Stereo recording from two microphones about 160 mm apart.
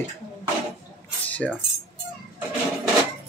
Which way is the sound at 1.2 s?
10° left (ahead or behind).